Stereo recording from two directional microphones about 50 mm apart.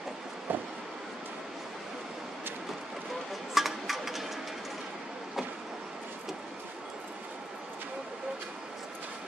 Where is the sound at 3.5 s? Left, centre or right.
Centre.